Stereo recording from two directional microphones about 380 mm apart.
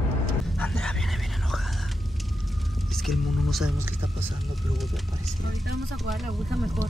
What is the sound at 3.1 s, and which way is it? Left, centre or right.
Speech, centre.